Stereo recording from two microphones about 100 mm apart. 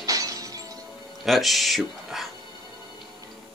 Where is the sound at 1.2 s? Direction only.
Centre (ahead or behind).